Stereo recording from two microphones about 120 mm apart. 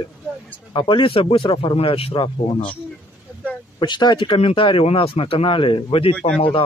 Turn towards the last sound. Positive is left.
turn(degrees=50)  # may be behind; listen again after turning